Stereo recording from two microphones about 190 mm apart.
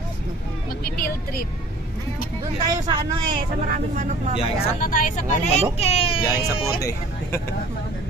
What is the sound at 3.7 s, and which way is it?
Speech, 45° right (ahead or behind).